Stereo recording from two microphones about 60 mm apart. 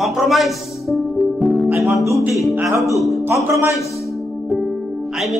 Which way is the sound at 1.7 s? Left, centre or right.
Right.